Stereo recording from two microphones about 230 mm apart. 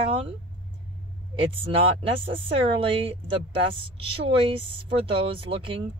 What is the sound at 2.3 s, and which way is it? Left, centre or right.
Speech, right.